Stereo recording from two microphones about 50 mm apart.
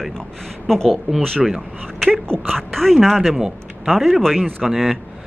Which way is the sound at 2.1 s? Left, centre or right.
Centre.